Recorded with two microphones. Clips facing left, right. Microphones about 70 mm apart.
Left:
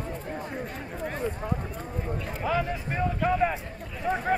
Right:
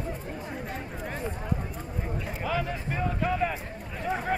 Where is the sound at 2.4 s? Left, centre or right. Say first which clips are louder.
Left 3 dB; centre.